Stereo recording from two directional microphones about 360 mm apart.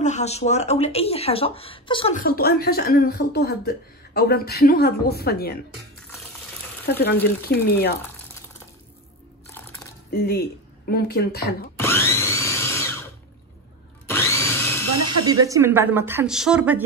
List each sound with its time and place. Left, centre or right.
0.0 s speech: centre
6.9 s speech: left
10.1 s speech: left
11.8 s tools: centre
14.0 s wood: centre
15.2 s a woman's voice: centre